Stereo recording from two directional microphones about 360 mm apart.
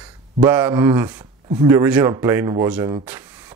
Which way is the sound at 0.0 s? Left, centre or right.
Centre.